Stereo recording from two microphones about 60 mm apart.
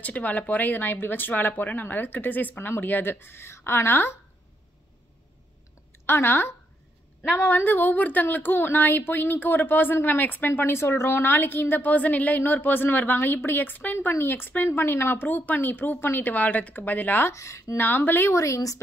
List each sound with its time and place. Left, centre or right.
0.0 s a woman's voice: left
6.0 s a woman's voice: left
13.9 s a woman's voice: left
17.3 s speech: left
17.7 s a woman's voice: left
18.3 s speech: left